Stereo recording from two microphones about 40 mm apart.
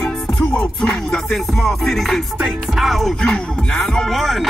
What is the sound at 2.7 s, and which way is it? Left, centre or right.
Speech, centre.